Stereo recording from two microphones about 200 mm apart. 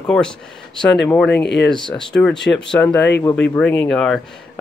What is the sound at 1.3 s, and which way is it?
Speech, 55° left (ahead or behind).